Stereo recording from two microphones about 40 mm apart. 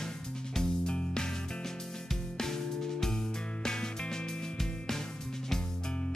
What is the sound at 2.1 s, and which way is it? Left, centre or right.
Music, centre.